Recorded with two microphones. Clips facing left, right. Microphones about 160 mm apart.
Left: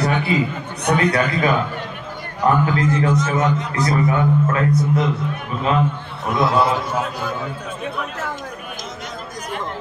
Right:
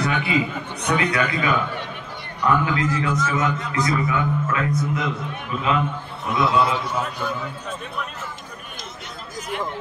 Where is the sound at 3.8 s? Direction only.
40° left (ahead or behind).